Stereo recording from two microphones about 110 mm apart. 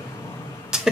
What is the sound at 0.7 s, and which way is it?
Music, 5° right (ahead or behind).